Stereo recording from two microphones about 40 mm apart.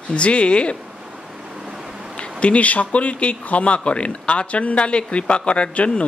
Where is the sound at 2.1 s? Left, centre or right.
Left.